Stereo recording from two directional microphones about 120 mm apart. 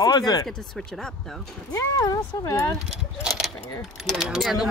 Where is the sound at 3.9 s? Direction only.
Centre (ahead or behind).